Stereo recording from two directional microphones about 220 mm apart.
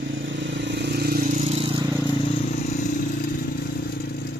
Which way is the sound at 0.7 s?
50° right (ahead or behind).